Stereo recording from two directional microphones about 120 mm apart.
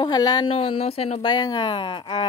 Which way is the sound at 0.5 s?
50° left (ahead or behind).